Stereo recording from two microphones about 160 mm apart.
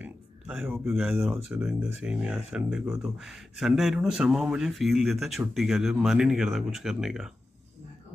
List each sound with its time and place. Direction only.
0.0 s speech: 5° right (ahead or behind)